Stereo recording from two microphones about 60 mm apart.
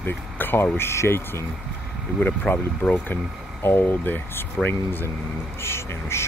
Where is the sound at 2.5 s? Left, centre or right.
Left.